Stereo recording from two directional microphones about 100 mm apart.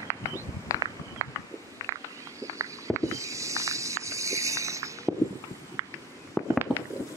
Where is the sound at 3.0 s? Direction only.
30° right (ahead or behind).